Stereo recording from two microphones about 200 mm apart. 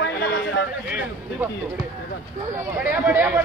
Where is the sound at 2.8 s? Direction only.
10° right (ahead or behind).